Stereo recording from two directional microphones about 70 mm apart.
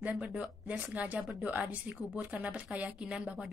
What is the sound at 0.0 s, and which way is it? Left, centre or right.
A woman's voice, centre.